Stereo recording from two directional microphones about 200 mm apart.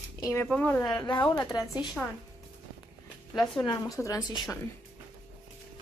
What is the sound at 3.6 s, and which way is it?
Speech, 15° left (ahead or behind).